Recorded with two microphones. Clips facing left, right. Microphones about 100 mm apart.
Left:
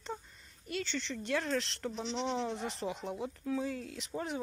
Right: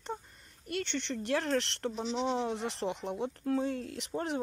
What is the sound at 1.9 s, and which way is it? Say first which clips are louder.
Speech: right 3 dB; 5° right (ahead or behind).